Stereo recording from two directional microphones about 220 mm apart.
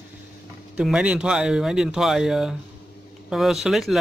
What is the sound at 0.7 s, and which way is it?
Speech, 5° right (ahead or behind).